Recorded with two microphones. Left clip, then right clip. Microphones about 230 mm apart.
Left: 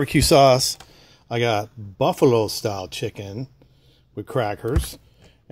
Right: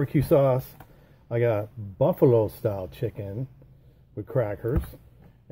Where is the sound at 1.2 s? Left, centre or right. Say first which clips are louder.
Left 3 dB; left.